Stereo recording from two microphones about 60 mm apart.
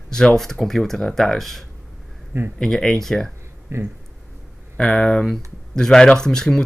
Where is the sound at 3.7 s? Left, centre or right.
Right.